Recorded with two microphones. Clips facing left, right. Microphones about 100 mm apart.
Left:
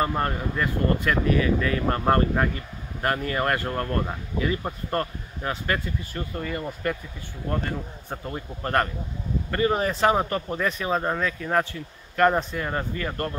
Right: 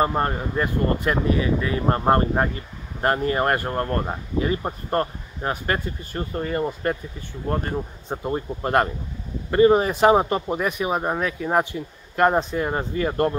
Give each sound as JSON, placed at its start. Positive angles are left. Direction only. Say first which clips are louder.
{"t": 0.0, "sound": "speech", "louder": "right 3 dB", "side_deg": -30}